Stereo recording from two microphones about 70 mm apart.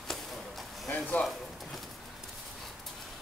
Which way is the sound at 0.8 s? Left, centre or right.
Left.